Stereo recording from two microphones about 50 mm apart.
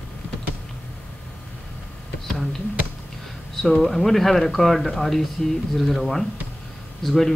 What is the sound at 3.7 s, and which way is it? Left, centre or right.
Speech, centre.